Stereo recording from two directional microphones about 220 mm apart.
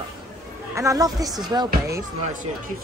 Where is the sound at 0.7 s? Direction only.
15° right (ahead or behind).